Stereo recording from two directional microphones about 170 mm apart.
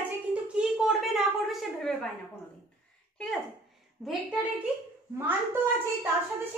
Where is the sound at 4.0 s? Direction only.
10° left (ahead or behind).